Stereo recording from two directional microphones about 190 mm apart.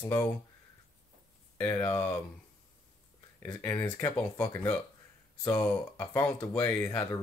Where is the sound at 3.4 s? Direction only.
10° left (ahead or behind).